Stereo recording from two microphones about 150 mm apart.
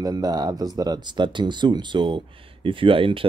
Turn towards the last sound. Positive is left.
turn(degrees=-35)  # may be behind; listen again after turning